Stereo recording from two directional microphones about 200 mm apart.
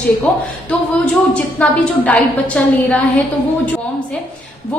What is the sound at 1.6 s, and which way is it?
A woman's voice, 5° left (ahead or behind).